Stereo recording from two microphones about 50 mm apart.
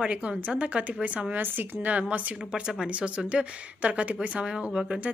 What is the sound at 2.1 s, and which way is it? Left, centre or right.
Speech, right.